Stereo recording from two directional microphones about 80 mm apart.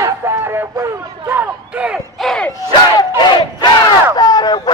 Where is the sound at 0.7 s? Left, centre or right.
Right.